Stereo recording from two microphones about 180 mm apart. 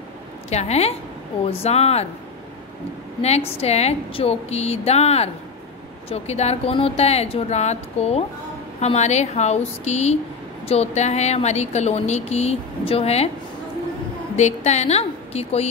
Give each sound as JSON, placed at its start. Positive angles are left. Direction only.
{"t": 0.5, "sound": "speech", "side_deg": 35}
{"t": 3.2, "sound": "speech", "side_deg": 35}
{"t": 14.3, "sound": "a woman's voice", "side_deg": 40}